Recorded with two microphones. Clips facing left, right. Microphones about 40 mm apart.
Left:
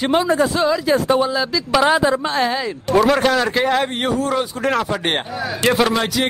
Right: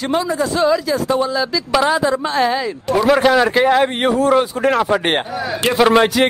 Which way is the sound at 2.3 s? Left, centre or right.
Centre.